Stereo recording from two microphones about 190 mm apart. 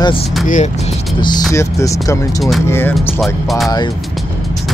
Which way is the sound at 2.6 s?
10° left (ahead or behind).